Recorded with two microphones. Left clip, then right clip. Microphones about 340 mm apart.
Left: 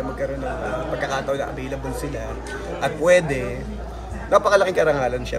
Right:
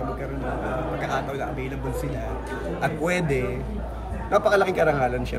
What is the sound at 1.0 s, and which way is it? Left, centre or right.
Speech, centre.